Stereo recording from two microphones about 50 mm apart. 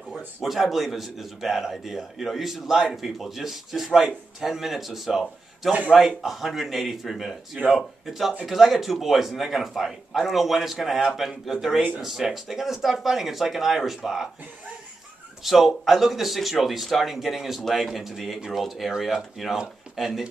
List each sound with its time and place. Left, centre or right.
0.4 s a man's voice: centre
15.4 s a man's voice: centre